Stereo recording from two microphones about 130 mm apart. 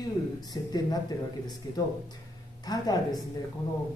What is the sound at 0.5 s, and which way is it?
A woman's voice, 30° left (ahead or behind).